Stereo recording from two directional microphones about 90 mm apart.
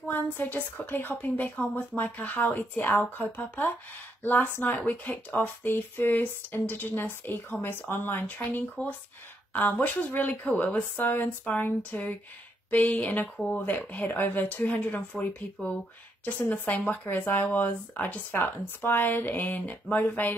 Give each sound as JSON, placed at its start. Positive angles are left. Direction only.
{"t": 0.1, "sound": "speech", "side_deg": 20}